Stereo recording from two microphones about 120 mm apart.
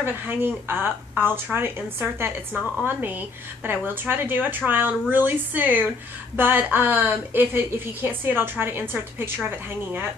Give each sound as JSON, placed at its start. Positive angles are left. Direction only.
{"t": 0.0, "sound": "a woman's voice", "side_deg": -20}